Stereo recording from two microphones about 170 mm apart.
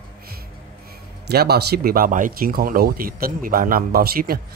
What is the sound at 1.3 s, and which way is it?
Speech, 70° right (ahead or behind).